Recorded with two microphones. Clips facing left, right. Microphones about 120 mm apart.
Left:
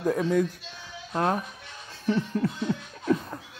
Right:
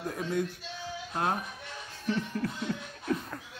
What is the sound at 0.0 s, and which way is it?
Speech, 90° left.